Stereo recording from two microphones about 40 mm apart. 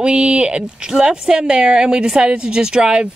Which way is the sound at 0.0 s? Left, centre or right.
Right.